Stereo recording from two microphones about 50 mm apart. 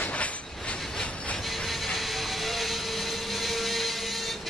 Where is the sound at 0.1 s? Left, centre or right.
Left.